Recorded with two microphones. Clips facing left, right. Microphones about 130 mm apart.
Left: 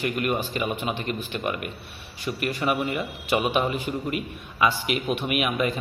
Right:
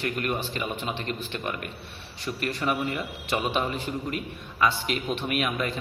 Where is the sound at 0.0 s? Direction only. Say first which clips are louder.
Left 3 dB; 10° left (ahead or behind).